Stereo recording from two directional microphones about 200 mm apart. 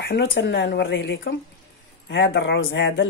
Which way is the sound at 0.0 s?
60° left (ahead or behind).